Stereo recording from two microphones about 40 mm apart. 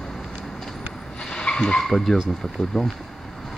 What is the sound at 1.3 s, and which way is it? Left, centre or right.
Vehicle, left.